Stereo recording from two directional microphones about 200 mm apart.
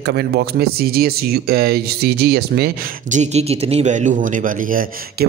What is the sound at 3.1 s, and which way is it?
A man's voice, 35° right (ahead or behind).